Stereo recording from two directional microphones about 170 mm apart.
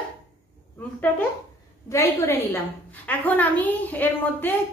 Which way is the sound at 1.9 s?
15° left (ahead or behind).